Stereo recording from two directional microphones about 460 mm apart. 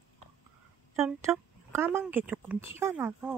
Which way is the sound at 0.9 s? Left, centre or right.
Centre.